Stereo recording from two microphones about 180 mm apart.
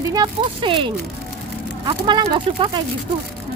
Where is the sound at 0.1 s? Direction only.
25° right (ahead or behind).